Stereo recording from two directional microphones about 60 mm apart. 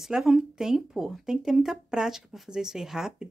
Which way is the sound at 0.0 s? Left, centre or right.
Centre.